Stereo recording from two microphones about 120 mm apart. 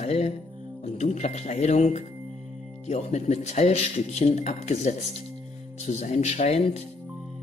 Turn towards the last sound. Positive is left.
turn(degrees=65)  # may be behind; listen again after turning